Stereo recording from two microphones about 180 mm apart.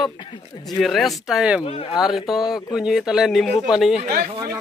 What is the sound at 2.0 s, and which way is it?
Speech, centre (ahead or behind).